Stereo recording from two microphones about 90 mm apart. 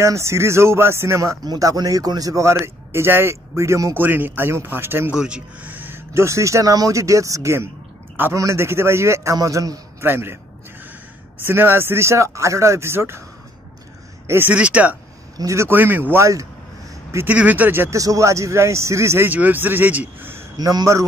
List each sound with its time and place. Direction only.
0.0 s a man's voice: 35° right (ahead or behind)
1.4 s a man's voice: 45° right (ahead or behind)
4.0 s speech: 20° right (ahead or behind)
5.1 s a man's voice: 10° right (ahead or behind); by 10.0 s 35° right (ahead or behind)
10.0 s speech: 25° right (ahead or behind)
14.2 s speech: 30° right (ahead or behind)
14.5 s speech: 15° right (ahead or behind)
15.3 s speech: 35° right (ahead or behind)
17.3 s speech: 15° right (ahead or behind)
17.9 s speech: 40° right (ahead or behind); by 20.4 s 25° right (ahead or behind)
20.5 s a man's voice: 45° right (ahead or behind)